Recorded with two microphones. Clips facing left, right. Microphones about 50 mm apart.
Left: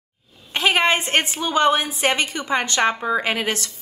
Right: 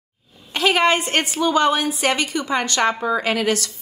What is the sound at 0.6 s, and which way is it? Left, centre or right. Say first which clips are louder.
A woman's voice: right 1 dB; left.